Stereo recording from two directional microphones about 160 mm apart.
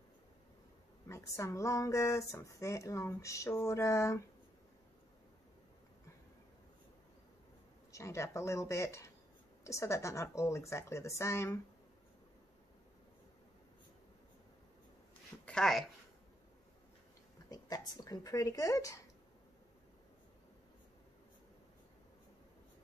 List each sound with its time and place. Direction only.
1.0 s speech: 20° left (ahead or behind)
7.9 s a woman's voice: 20° left (ahead or behind)
15.4 s speech: 5° left (ahead or behind)
17.5 s speech: 25° left (ahead or behind)